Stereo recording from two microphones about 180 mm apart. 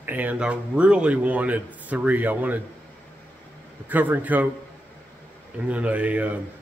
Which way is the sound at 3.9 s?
10° right (ahead or behind).